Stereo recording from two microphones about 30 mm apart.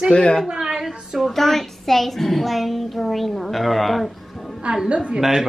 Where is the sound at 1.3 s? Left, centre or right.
Centre.